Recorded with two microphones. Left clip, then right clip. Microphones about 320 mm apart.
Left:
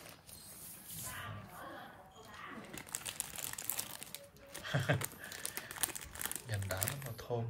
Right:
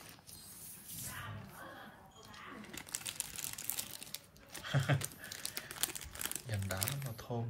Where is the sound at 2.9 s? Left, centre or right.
Centre.